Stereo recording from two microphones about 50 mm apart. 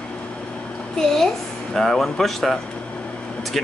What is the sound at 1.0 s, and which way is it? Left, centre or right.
A woman's voice, centre.